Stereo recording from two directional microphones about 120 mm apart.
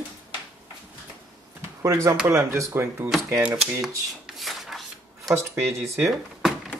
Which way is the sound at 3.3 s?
10° right (ahead or behind).